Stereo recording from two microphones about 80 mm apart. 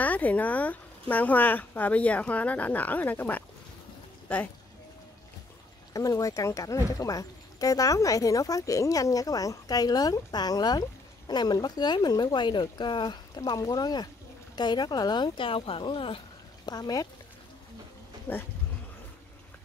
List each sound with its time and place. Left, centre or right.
0.0 s speech: centre
5.9 s speech: left
13.6 s speech: left
16.6 s speech: left
18.3 s speech: left